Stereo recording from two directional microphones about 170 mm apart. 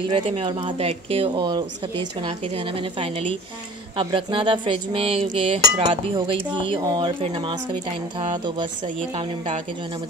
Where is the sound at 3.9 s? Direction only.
30° right (ahead or behind).